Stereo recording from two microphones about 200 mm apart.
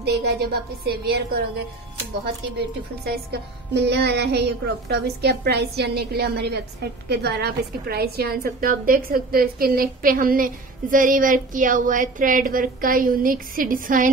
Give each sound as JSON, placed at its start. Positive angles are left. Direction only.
{"t": 0.0, "sound": "a woman's voice", "side_deg": -55}
{"t": 3.3, "sound": "a woman's voice", "side_deg": -55}